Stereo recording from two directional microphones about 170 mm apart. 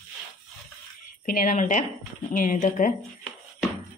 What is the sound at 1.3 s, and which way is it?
Speech, 50° left (ahead or behind).